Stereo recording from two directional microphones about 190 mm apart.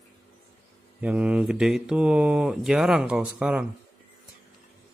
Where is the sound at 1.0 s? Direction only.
5° right (ahead or behind).